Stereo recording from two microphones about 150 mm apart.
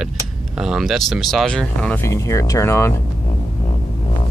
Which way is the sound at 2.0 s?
20° left (ahead or behind).